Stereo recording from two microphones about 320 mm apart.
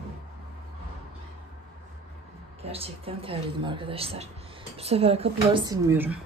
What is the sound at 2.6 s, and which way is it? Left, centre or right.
Speech, centre.